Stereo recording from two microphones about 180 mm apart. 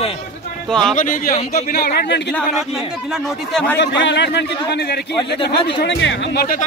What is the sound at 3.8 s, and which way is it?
A man's voice, 75° left (ahead or behind).